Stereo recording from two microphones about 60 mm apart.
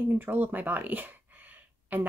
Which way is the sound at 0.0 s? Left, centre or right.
Right.